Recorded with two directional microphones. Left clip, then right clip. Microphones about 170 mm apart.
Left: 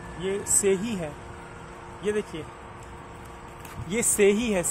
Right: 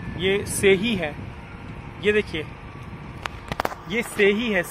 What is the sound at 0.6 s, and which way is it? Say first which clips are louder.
Speech: right 7 dB; 25° right (ahead or behind).